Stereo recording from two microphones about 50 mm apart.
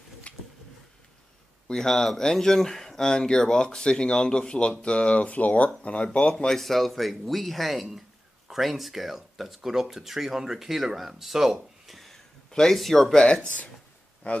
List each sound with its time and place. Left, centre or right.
0.3 s a sound: left
1.7 s speech: centre; by 6.0 s left
6.3 s speech: centre
13.2 s speech: centre